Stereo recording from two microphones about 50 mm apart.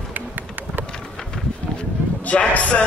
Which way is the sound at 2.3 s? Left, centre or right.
Left.